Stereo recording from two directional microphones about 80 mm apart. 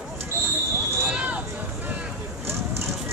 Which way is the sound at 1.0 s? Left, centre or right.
Centre.